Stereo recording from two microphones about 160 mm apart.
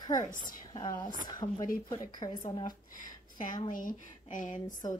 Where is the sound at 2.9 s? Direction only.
55° left (ahead or behind).